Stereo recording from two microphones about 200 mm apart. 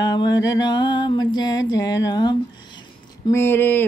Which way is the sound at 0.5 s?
20° left (ahead or behind).